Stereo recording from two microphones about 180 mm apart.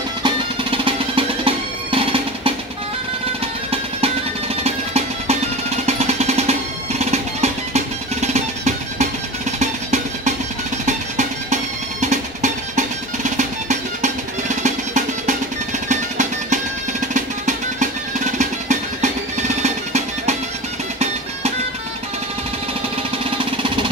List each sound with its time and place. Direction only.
0.2 s music: 30° right (ahead or behind)
4.6 s music: 35° right (ahead or behind)
23.3 s a sound: 30° right (ahead or behind)